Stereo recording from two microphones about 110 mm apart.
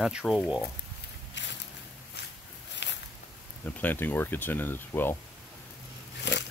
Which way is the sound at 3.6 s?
15° left (ahead or behind).